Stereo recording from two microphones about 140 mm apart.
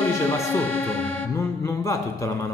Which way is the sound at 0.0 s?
15° left (ahead or behind).